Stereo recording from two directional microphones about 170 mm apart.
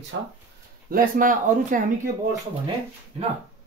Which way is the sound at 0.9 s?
55° right (ahead or behind).